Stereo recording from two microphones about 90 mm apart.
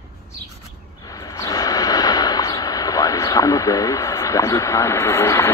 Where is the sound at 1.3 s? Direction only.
45° left (ahead or behind).